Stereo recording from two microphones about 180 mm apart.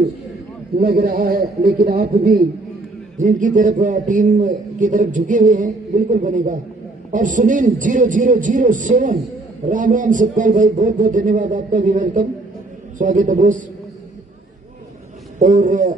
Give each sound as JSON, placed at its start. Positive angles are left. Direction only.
{"t": 0.7, "sound": "a man's voice", "side_deg": -55}
{"t": 3.2, "sound": "a man's voice", "side_deg": -45}
{"t": 15.3, "sound": "a man's voice", "side_deg": -45}